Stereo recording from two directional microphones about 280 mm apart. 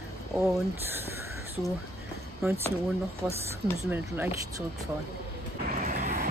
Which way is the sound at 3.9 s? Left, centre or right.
Centre.